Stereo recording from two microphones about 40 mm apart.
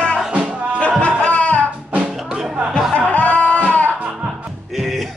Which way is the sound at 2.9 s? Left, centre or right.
Left.